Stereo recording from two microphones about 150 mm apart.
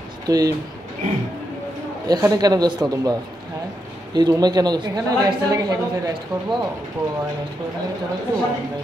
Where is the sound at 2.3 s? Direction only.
25° right (ahead or behind).